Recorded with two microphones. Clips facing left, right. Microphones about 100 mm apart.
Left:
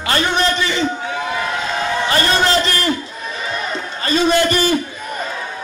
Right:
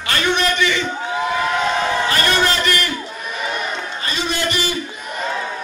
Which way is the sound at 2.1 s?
30° left (ahead or behind).